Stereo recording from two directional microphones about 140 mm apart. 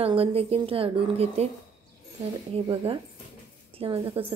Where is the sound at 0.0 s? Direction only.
45° right (ahead or behind).